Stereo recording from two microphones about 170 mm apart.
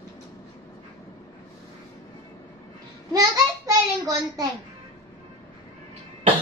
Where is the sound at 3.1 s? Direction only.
20° right (ahead or behind).